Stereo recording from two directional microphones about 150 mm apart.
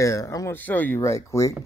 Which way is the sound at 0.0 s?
20° left (ahead or behind).